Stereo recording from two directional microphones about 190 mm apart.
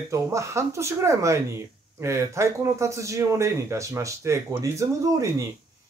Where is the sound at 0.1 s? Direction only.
15° right (ahead or behind).